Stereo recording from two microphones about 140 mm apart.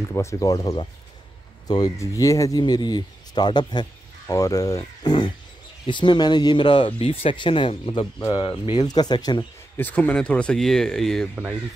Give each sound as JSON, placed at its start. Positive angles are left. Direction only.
{"t": 0.1, "sound": "speech", "side_deg": 20}
{"t": 9.8, "sound": "speech", "side_deg": 10}